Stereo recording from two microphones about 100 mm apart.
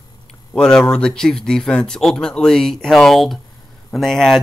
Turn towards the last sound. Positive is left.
turn(degrees=5)  # may be behind; listen again after turning